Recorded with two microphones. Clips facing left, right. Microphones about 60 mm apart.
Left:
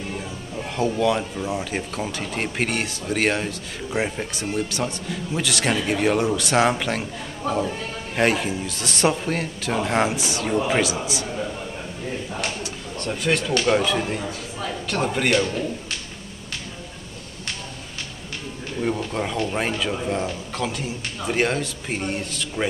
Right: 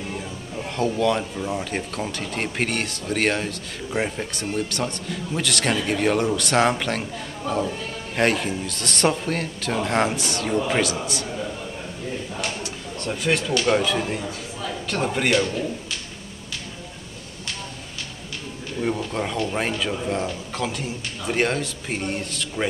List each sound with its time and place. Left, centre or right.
0.6 s speech: centre
12.6 s a sound: centre
13.7 s speech: centre
18.8 s speech: centre